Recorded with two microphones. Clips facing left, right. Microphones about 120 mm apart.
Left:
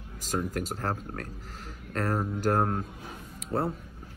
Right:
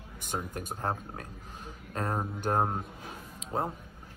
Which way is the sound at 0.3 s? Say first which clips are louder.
Left 5 dB; 20° right (ahead or behind).